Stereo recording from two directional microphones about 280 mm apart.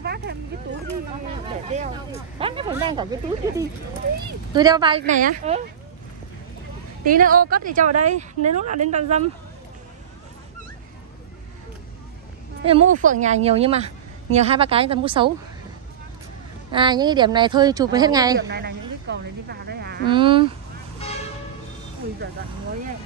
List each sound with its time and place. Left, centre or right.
0.0 s dog: right
2.3 s a woman's voice: centre
7.1 s a woman's voice: right
12.6 s a woman's voice: right
16.7 s speech: centre
18.4 s speech: right
20.1 s speech: centre